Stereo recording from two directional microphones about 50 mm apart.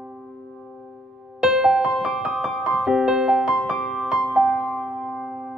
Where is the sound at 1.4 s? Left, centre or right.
Centre.